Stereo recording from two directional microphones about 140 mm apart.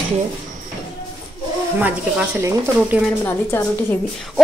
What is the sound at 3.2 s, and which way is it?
Speech, 15° left (ahead or behind).